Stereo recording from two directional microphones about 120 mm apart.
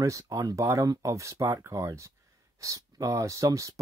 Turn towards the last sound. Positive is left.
turn(degrees=-25)  # may be behind; listen again after turning